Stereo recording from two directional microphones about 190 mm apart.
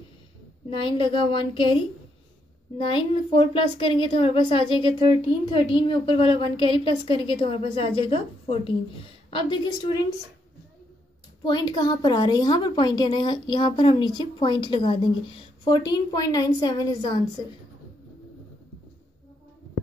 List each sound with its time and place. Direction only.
0.7 s a woman's voice: 25° left (ahead or behind)
2.8 s a woman's voice: 25° left (ahead or behind)
11.4 s a woman's voice: 20° left (ahead or behind)